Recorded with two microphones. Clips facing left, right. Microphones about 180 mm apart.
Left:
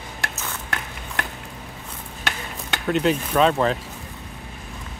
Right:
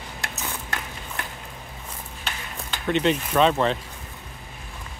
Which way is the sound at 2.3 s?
75° left (ahead or behind).